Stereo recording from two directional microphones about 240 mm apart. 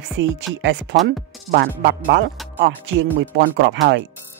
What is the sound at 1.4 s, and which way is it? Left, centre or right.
Speech, right.